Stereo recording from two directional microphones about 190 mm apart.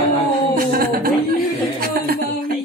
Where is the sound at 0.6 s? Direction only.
50° right (ahead or behind).